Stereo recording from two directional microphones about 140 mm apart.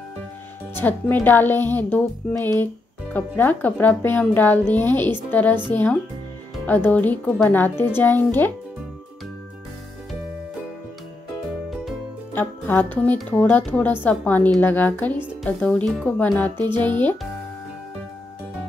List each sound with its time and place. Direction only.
0.7 s speech: 15° left (ahead or behind)
12.4 s speech: 15° left (ahead or behind)